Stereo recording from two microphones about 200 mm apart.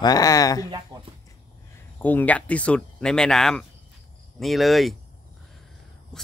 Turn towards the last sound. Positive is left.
turn(degrees=0)  # may be behind; listen again after turning